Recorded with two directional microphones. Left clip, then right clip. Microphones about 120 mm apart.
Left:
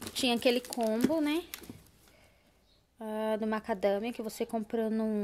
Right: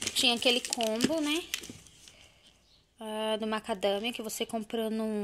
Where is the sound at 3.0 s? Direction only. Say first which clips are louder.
Right 1 dB; 20° left (ahead or behind).